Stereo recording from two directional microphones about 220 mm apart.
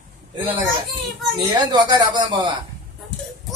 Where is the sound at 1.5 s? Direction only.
20° right (ahead or behind).